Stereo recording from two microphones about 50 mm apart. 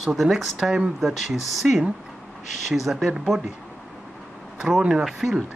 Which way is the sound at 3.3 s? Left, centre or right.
Centre.